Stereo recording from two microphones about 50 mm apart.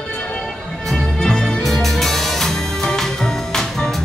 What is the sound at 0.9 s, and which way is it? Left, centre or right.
Music, centre.